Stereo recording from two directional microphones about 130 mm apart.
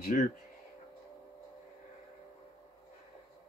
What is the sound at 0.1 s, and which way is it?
Speech, 80° left.